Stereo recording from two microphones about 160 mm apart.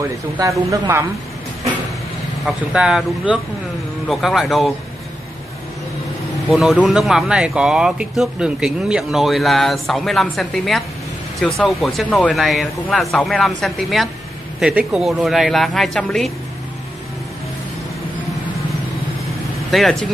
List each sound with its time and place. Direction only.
0.4 s speech: 20° right (ahead or behind)
2.4 s speech: 5° right (ahead or behind)
6.5 s speech: centre (ahead or behind)
19.7 s speech: centre (ahead or behind)